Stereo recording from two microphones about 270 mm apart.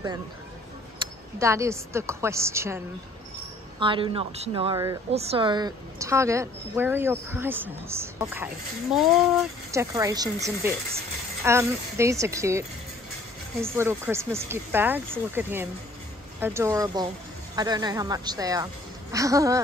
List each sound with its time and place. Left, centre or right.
0.9 s a woman's voice: centre
3.8 s a woman's voice: centre
9.7 s a woman's voice: centre